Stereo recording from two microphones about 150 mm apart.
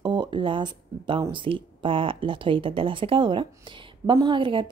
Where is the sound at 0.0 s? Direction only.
30° right (ahead or behind).